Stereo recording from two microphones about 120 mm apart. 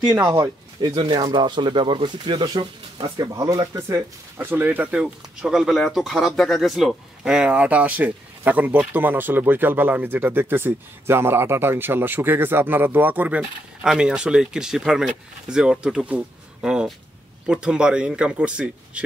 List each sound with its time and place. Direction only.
0.2 s speech: 30° right (ahead or behind); by 19.0 s 10° right (ahead or behind)